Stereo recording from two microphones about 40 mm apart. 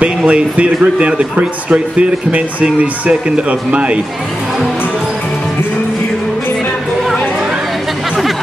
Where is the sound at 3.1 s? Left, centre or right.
Right.